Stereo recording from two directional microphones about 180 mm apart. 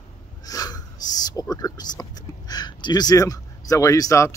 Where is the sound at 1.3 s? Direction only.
20° left (ahead or behind).